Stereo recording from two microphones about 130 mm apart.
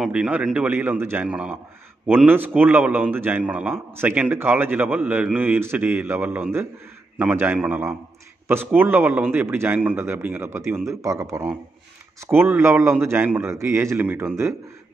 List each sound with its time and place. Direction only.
0.0 s a man's voice: 5° right (ahead or behind)